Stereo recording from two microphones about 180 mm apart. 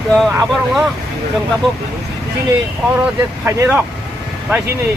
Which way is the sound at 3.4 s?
10° right (ahead or behind).